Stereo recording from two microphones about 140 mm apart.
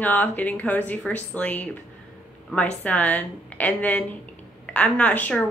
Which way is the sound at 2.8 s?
10° left (ahead or behind).